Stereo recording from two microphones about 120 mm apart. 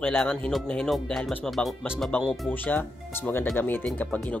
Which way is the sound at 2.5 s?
15° left (ahead or behind).